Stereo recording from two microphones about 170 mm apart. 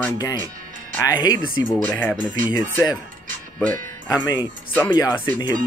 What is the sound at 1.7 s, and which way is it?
Speech, 10° left (ahead or behind).